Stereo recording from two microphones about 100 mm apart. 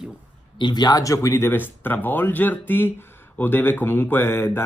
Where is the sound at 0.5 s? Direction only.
45° left (ahead or behind).